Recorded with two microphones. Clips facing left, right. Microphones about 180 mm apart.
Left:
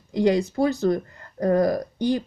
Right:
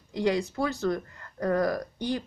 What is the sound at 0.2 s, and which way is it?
Speech, 40° left (ahead or behind).